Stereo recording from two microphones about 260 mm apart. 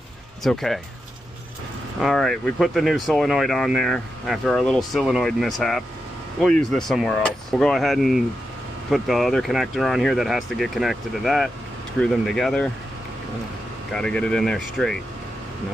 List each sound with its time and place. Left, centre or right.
0.4 s speech: centre
2.0 s speech: centre
13.9 s speech: centre